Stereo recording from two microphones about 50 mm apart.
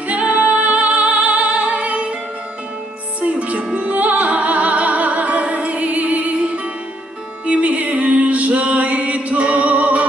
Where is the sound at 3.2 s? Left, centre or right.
Right.